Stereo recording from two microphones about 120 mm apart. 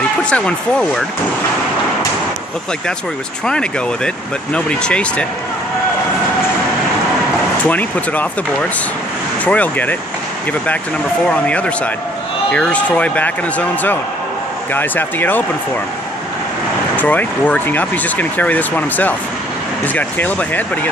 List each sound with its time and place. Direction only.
0.2 s speech: 10° left (ahead or behind)
3.4 s speech: 5° left (ahead or behind)
7.6 s speech: 10° left (ahead or behind)
9.4 s speech: 10° left (ahead or behind)
11.2 s speech: 10° left (ahead or behind)
16.9 s speech: 15° left (ahead or behind)